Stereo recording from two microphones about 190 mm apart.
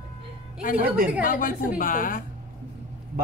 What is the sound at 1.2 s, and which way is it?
A woman's voice, 45° left (ahead or behind).